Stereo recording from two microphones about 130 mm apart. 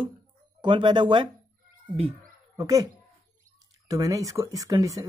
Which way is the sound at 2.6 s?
25° right (ahead or behind).